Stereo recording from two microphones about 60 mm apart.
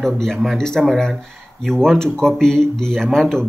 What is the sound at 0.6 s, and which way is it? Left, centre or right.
A man's voice, centre.